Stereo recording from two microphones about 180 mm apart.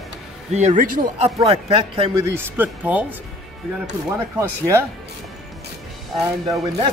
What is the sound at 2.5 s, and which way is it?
Speech, 10° right (ahead or behind).